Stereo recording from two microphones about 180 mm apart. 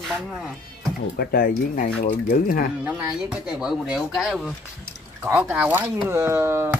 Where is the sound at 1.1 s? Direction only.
55° left (ahead or behind).